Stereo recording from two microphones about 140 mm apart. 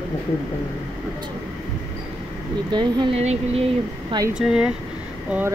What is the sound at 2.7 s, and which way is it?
Speech, 35° right (ahead or behind).